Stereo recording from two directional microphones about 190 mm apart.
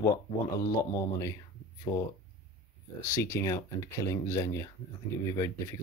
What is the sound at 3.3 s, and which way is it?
Speech, 15° left (ahead or behind).